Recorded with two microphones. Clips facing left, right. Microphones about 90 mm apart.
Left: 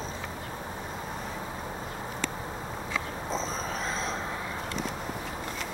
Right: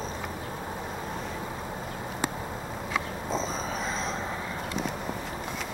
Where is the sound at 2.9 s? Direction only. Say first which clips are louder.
Right 2 dB; 5° right (ahead or behind).